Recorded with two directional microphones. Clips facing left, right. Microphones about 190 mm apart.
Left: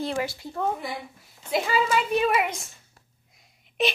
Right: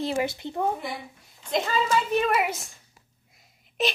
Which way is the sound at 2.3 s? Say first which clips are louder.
Even; centre (ahead or behind).